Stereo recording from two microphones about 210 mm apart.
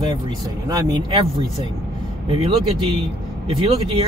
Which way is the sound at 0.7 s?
15° right (ahead or behind).